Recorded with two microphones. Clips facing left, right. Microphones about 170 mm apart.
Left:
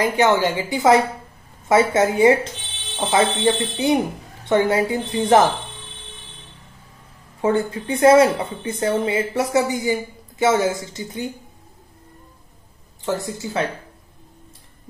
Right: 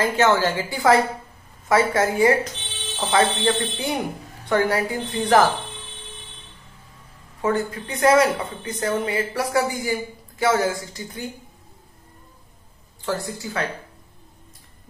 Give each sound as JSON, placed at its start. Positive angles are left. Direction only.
{"t": 0.0, "sound": "a woman's voice", "side_deg": 15}
{"t": 7.4, "sound": "speech", "side_deg": 25}
{"t": 13.0, "sound": "speech", "side_deg": 20}